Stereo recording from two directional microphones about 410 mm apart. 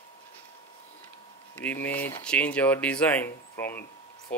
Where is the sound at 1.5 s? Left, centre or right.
Centre.